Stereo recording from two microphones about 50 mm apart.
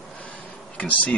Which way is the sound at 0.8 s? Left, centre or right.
Left.